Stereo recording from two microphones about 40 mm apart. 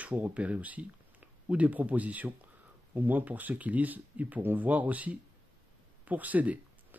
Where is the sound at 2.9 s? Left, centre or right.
Right.